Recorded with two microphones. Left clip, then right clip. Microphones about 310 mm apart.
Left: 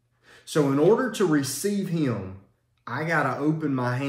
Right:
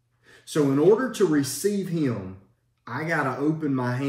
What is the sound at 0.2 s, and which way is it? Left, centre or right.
Speech, centre.